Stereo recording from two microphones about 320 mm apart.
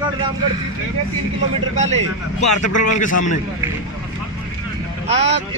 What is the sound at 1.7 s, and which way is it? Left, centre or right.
Speech, right.